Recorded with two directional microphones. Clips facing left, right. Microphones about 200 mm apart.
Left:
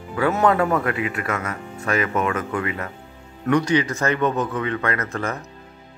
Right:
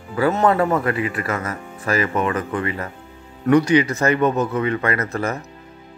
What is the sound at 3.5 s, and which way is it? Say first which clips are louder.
Speech: right 4 dB; 10° right (ahead or behind).